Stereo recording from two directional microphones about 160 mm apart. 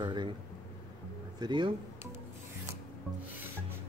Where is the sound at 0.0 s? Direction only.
30° right (ahead or behind).